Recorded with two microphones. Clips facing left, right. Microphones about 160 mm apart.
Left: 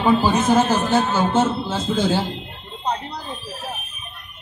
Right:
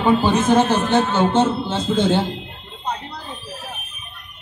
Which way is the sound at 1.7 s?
25° right (ahead or behind).